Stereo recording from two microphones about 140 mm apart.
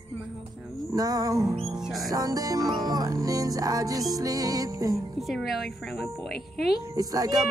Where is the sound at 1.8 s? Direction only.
5° right (ahead or behind).